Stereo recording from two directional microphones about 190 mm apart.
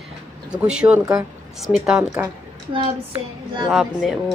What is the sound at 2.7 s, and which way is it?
Child singing, 25° right (ahead or behind).